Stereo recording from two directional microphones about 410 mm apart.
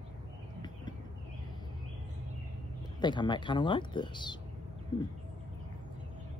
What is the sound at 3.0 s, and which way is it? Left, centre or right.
Speech, centre.